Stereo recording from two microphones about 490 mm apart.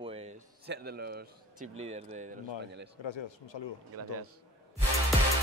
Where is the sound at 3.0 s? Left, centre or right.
Left.